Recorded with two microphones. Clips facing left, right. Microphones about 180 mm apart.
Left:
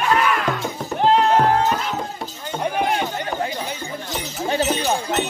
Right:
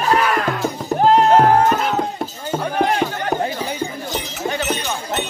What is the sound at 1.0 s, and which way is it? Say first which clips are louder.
Music: right 3 dB; 45° right (ahead or behind).